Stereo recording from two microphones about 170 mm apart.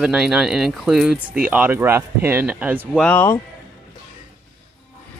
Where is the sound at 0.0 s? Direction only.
5° right (ahead or behind).